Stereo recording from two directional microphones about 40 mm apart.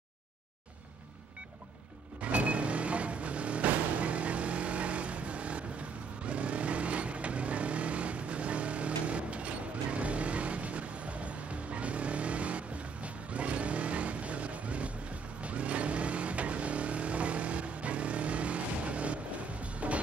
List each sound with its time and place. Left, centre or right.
2.2 s vehicle: right
19.6 s music: right